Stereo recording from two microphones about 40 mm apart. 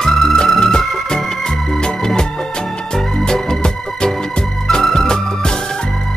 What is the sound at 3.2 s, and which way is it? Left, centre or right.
Music, centre.